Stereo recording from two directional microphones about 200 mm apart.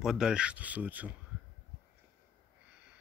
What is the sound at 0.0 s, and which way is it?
Speech, centre (ahead or behind).